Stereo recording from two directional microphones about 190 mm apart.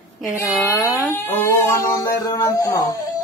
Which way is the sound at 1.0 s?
15° left (ahead or behind).